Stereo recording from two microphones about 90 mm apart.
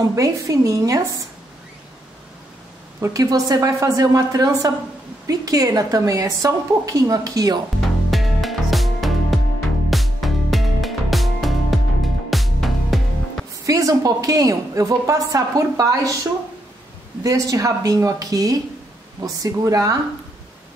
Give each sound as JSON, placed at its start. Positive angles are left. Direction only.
{"t": 0.1, "sound": "a woman's voice", "side_deg": -40}
{"t": 3.0, "sound": "a woman's voice", "side_deg": -40}
{"t": 7.8, "sound": "music", "side_deg": 0}
{"t": 13.7, "sound": "a woman's voice", "side_deg": -40}
{"t": 17.2, "sound": "a woman's voice", "side_deg": -40}